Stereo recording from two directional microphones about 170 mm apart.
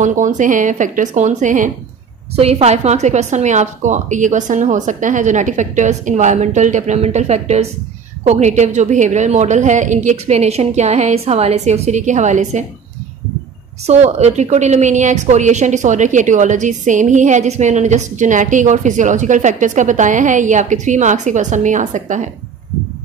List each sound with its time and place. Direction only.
0.0 s a woman's voice: 45° right (ahead or behind)
13.8 s a woman's voice: 40° right (ahead or behind)